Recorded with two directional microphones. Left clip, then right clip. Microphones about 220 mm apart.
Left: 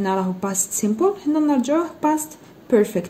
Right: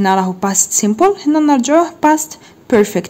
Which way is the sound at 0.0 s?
35° right (ahead or behind).